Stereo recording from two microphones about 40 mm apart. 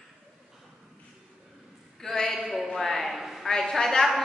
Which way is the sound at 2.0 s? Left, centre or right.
Centre.